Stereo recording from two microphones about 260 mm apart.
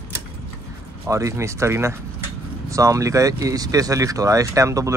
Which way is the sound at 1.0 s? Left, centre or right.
Centre.